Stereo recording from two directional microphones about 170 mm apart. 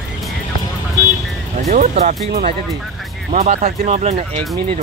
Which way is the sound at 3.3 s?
45° right (ahead or behind).